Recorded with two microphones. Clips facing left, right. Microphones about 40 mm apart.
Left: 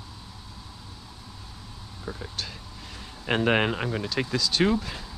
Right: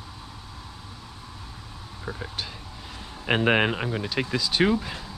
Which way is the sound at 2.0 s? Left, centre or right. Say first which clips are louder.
Right 2 dB; centre.